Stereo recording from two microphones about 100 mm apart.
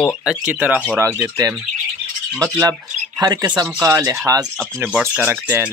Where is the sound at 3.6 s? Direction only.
30° right (ahead or behind).